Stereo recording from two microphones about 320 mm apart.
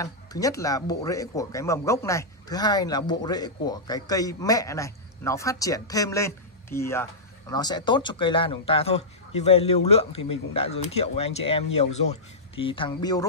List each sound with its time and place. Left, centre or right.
0.0 s speech: centre